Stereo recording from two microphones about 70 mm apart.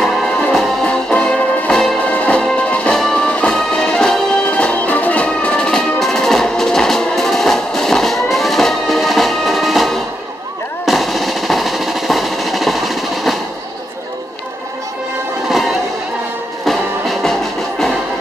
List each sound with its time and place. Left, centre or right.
0.0 s music: centre
2.0 s music: centre
10.9 s drum roll: centre
16.6 s music: centre